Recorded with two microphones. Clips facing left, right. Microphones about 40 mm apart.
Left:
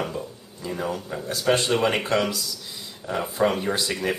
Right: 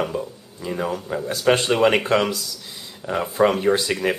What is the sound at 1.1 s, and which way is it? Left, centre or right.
Speech, right.